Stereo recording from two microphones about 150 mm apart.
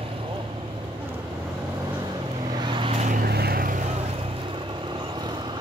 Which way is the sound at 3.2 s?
90° right.